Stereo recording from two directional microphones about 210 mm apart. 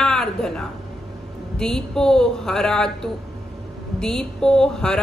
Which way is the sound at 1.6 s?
Centre (ahead or behind).